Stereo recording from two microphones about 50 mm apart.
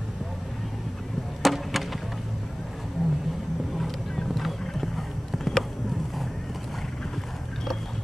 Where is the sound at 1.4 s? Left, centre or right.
Centre.